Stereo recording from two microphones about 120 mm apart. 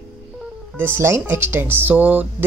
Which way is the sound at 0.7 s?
20° right (ahead or behind).